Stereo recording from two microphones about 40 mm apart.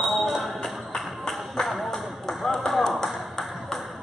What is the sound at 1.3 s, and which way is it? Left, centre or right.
Music, centre.